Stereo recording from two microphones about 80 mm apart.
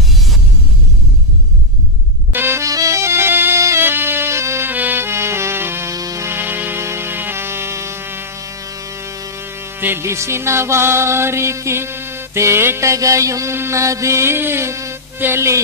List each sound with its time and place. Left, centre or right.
2.3 s music: right
2.6 s music: right
5.9 s music: right
6.2 s music: right
9.8 s music: right